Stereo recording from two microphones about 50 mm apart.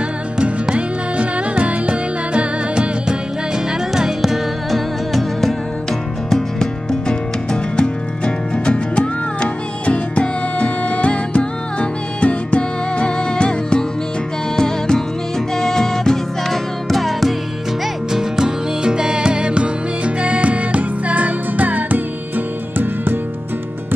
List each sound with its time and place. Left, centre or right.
0.4 s music: right; by 5.5 s centre
6.3 s music: centre
18.1 s music: centre; by 22.0 s right